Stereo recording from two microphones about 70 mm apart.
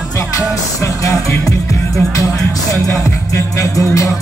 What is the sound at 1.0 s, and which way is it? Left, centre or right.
Music, left.